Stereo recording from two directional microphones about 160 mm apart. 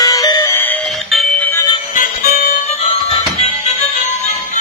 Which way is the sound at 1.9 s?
60° left (ahead or behind).